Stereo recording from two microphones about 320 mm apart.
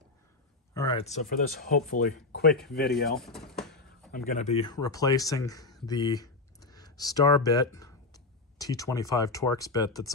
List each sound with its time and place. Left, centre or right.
0.7 s speech: centre; by 3.1 s left
3.2 s a sound: centre
4.1 s speech: left